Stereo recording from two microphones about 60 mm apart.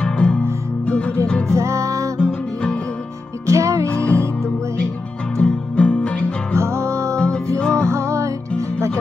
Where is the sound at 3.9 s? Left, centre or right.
Left.